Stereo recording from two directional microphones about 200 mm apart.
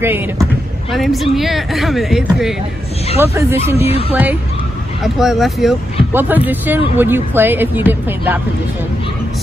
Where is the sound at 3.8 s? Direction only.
30° left (ahead or behind).